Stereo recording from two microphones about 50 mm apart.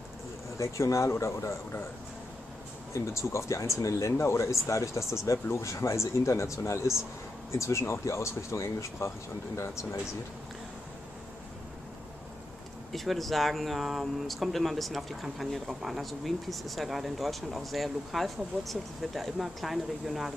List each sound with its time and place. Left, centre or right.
0.6 s speech: left
2.9 s speech: left
12.9 s speech: centre